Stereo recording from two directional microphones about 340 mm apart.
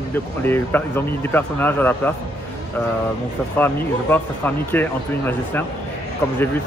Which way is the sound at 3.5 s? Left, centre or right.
Centre.